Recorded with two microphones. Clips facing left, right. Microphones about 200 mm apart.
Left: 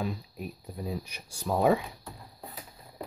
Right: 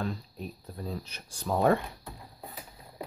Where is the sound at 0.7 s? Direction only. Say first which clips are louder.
Left 2 dB; 10° left (ahead or behind).